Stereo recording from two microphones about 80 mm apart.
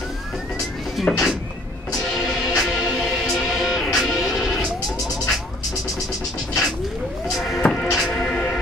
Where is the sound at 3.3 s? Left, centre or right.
Centre.